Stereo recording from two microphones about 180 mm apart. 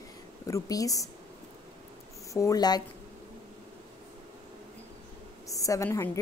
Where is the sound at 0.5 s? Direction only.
20° left (ahead or behind).